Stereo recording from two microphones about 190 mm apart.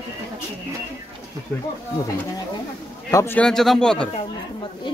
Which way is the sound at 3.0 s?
15° left (ahead or behind).